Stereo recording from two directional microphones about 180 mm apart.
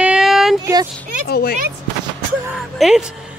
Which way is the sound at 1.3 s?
55° left (ahead or behind).